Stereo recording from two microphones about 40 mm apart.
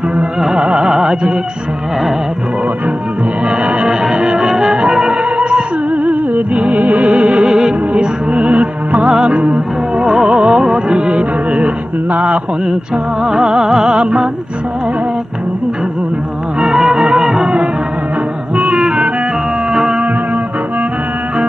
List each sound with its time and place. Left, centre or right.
0.6 s music: right
3.4 s music: right
10.0 s music: centre
11.5 s a sound: right
12.6 s music: centre
16.6 s music: centre
18.6 s music: right
19.7 s music: centre